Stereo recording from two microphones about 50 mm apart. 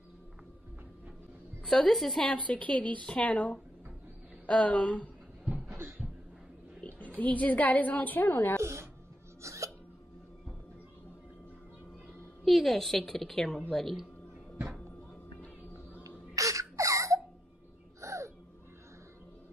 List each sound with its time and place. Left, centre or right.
1.6 s a woman's voice: centre
2.3 s a woman's voice: left
7.2 s a woman's voice: left
9.4 s hiccup: right
12.4 s a woman's voice: centre
16.0 s a sound: right
18.0 s a sound: right